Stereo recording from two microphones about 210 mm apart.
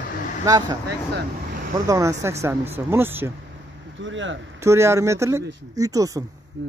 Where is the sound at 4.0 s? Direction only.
65° right (ahead or behind).